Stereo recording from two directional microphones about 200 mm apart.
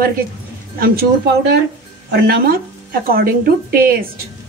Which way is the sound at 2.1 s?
50° right (ahead or behind).